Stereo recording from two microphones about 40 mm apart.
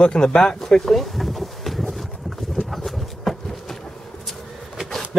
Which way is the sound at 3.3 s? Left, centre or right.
Centre.